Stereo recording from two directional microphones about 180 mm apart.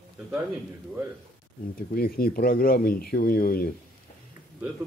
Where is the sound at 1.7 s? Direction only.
55° left (ahead or behind).